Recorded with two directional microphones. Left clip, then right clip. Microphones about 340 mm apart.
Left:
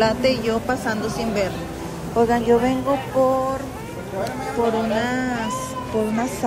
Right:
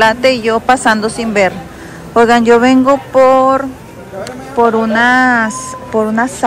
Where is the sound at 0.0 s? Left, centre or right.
Centre.